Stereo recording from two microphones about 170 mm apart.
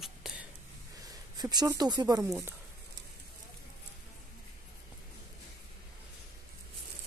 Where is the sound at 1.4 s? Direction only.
25° right (ahead or behind).